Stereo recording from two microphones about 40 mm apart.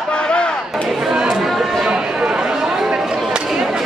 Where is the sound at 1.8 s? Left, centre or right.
Centre.